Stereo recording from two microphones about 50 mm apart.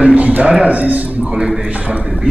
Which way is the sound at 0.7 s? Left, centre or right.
Right.